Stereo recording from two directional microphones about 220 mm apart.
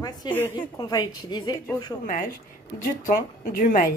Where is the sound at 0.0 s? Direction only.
20° left (ahead or behind).